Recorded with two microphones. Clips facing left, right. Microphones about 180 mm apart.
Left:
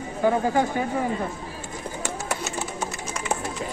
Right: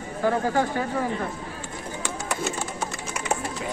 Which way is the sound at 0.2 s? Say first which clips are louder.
Left 2 dB; 15° left (ahead or behind).